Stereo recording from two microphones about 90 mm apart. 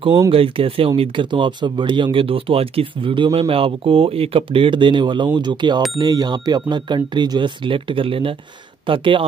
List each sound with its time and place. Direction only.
0.3 s speech: 90° right
8.8 s speech: 70° right (ahead or behind)